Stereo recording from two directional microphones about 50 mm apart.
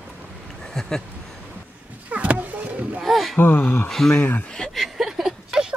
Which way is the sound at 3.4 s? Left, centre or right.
Left.